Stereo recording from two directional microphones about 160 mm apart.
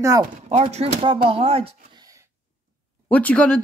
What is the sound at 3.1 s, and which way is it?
Speech, 10° left (ahead or behind).